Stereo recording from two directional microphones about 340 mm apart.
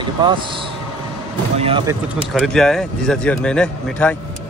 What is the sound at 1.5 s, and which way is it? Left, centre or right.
Speech, centre.